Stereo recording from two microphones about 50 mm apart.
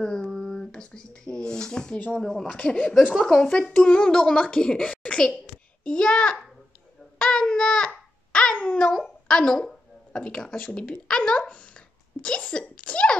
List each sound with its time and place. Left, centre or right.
0.0 s a sound: centre
2.1 s speech: centre
2.4 s speech: left
3.2 s speech: centre
7.2 s child singing: centre
8.3 s babbling: left
8.7 s speech: centre
9.3 s a sound: centre
10.2 s speech: centre